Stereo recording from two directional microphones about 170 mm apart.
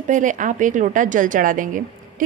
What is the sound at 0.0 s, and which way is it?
A woman's voice, 50° right (ahead or behind).